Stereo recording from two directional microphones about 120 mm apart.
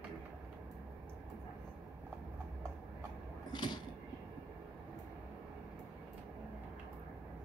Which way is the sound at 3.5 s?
40° left (ahead or behind).